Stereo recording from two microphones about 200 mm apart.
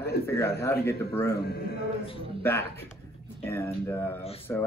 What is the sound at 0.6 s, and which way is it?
Speech, 10° left (ahead or behind).